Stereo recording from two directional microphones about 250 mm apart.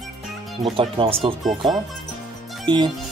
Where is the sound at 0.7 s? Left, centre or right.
Right.